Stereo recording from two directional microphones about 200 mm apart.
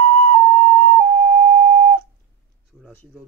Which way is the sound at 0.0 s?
90° right.